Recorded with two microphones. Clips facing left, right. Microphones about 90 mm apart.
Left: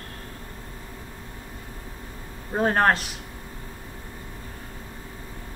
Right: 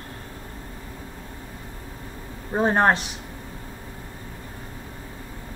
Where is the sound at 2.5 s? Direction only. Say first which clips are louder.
Right 1 dB; 15° right (ahead or behind).